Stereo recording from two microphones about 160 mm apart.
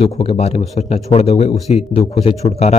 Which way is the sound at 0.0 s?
35° left (ahead or behind).